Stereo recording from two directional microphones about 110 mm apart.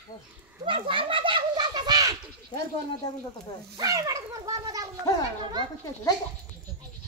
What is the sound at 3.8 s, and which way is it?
Speech, 30° right (ahead or behind).